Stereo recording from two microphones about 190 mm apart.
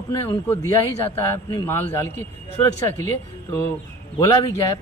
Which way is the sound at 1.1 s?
10° left (ahead or behind).